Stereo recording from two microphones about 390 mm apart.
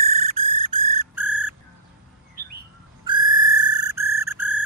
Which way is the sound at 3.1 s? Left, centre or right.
Centre.